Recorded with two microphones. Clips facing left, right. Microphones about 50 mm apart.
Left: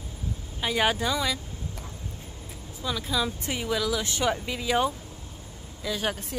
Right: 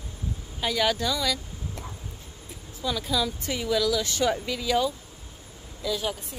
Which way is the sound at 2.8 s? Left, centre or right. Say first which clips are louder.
Right 1 dB; centre.